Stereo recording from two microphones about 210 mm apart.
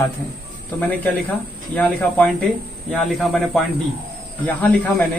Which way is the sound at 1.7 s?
5° left (ahead or behind).